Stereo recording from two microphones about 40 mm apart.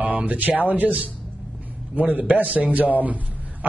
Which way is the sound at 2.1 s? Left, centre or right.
Right.